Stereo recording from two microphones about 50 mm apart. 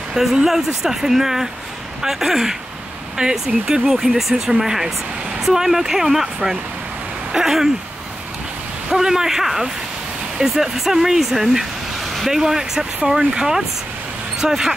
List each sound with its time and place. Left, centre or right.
0.1 s speech: centre
8.9 s speech: centre